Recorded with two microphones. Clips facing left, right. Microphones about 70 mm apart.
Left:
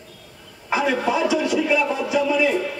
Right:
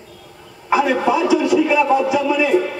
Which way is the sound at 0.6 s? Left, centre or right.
Right.